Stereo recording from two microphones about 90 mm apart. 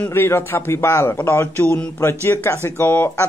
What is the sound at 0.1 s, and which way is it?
A man's voice, 25° left (ahead or behind).